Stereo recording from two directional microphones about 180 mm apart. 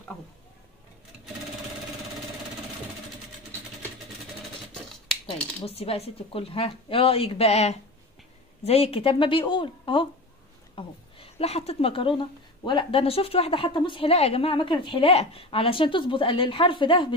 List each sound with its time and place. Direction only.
5.7 s a woman's voice: 35° left (ahead or behind)